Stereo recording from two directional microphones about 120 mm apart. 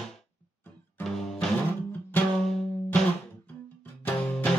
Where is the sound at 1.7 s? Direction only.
15° left (ahead or behind).